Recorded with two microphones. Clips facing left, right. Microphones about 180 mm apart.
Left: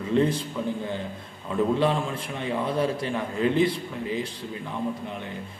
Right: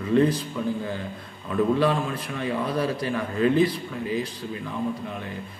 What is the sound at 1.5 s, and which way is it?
A man's voice, 20° left (ahead or behind).